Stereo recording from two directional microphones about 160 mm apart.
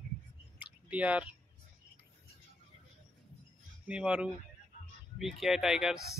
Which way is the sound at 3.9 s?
5° right (ahead or behind).